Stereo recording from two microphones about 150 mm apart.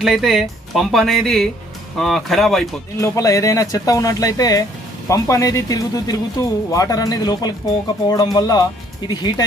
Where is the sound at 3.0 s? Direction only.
20° left (ahead or behind).